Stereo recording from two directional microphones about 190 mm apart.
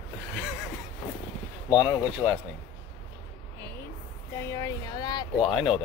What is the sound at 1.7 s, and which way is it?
Speech, 20° left (ahead or behind).